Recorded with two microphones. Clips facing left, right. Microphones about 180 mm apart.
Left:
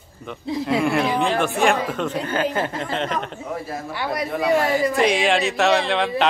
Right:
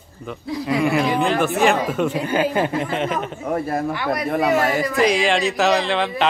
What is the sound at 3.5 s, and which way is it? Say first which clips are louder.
Speech: right 9 dB; 55° right (ahead or behind).